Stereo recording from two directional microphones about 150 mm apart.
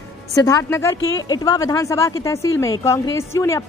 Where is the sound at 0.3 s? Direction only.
25° left (ahead or behind).